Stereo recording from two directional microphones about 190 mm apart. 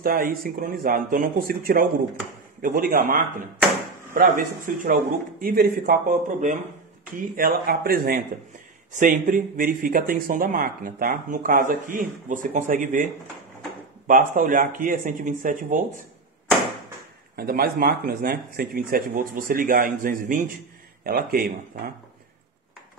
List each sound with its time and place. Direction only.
0.0 s speech: 50° right (ahead or behind)
14.0 s speech: 45° right (ahead or behind)
17.4 s speech: 50° right (ahead or behind)